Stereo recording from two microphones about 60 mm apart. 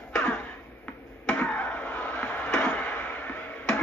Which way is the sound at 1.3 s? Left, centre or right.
Left.